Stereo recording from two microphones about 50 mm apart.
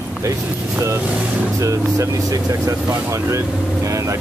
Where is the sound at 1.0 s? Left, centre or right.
Right.